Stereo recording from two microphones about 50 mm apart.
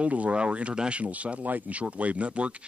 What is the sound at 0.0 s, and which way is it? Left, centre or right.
Speech, right.